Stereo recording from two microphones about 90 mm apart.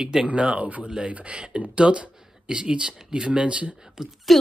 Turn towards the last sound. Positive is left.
turn(degrees=0)  # may be behind; listen again after turning